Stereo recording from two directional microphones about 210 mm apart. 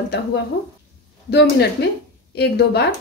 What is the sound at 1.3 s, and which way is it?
A woman's voice, 50° left (ahead or behind).